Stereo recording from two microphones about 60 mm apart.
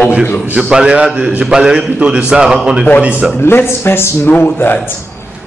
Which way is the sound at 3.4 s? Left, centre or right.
Left.